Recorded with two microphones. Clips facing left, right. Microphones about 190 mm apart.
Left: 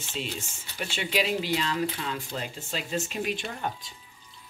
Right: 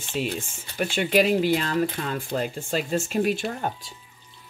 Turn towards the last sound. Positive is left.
turn(degrees=-45)  # may be behind; listen again after turning